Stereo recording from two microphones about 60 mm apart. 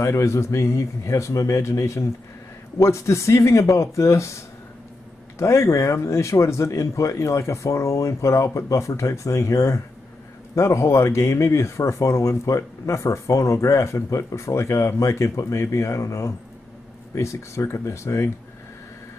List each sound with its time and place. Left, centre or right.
0.0 s speech: left
5.4 s speech: left